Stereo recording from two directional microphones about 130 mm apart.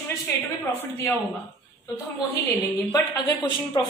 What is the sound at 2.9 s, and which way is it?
Speech, 30° left (ahead or behind).